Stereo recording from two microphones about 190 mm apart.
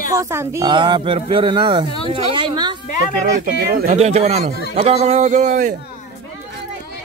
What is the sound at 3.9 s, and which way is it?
A man's voice, 35° right (ahead or behind).